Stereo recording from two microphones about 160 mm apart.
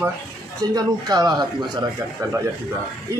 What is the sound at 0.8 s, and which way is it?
Speech, 25° right (ahead or behind).